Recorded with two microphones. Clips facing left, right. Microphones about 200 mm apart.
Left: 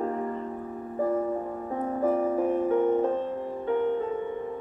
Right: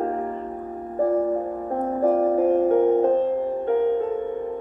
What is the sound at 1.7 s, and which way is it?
Music, 45° right (ahead or behind).